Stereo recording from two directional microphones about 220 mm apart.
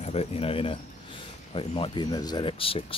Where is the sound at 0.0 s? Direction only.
30° left (ahead or behind).